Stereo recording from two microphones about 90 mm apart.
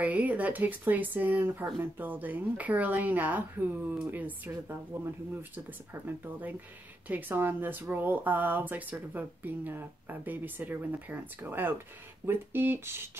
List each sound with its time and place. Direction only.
0.0 s speech: 15° right (ahead or behind)
4.5 s speech: 30° right (ahead or behind)